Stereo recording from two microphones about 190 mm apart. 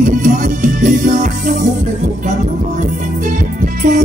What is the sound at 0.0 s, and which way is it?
Music, 40° right (ahead or behind).